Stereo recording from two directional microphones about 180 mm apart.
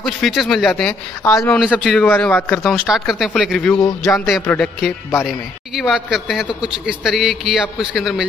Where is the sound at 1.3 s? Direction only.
15° left (ahead or behind).